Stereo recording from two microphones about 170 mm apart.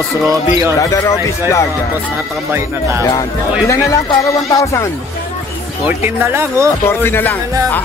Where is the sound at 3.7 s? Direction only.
20° left (ahead or behind).